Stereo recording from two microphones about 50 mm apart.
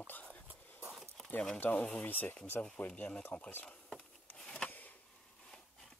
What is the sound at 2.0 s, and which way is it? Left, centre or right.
Speech, left.